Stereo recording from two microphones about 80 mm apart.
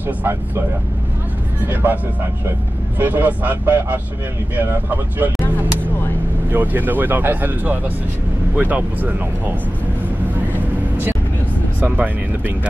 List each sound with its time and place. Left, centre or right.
1.6 s speech: right
3.0 s speech: right
6.5 s speech: right
10.5 s vehicle: right
11.8 s speech: right